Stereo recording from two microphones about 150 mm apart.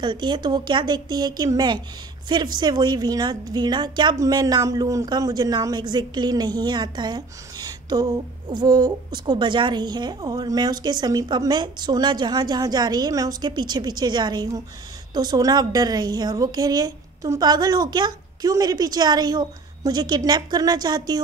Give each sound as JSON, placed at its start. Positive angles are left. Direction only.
{"t": 0.0, "sound": "a woman's voice", "side_deg": -30}